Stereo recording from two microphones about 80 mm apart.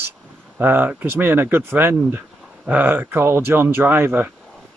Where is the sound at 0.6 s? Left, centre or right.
Right.